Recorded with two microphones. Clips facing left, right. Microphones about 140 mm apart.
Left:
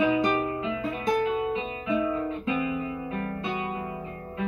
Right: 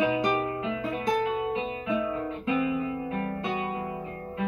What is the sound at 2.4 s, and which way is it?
Music, 55° right (ahead or behind).